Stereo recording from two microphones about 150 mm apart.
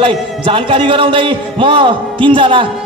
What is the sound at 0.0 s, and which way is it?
A man's voice, 35° right (ahead or behind).